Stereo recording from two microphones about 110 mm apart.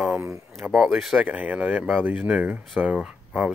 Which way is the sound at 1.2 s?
15° right (ahead or behind).